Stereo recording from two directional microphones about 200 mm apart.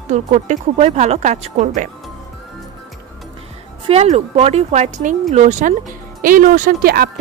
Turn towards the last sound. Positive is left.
turn(degrees=-45)  # may be behind; listen again after turning